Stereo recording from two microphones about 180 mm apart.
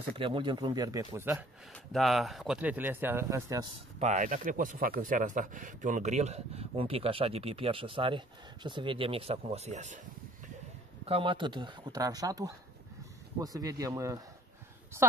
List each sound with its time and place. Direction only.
0.2 s speech: 30° right (ahead or behind)
1.7 s speech: centre (ahead or behind); by 3.7 s 20° right (ahead or behind)
4.0 s speech: 40° right (ahead or behind)
11.1 s speech: 30° right (ahead or behind)